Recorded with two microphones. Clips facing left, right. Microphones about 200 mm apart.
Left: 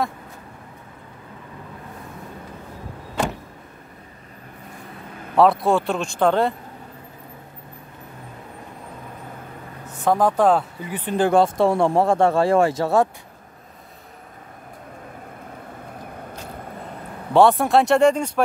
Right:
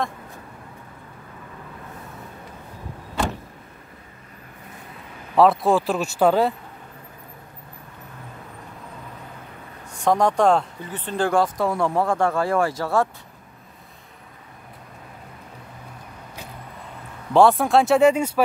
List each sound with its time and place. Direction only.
5.3 s speech: centre (ahead or behind)
9.8 s speech: 5° left (ahead or behind); by 13.1 s 20° left (ahead or behind)
17.3 s speech: centre (ahead or behind)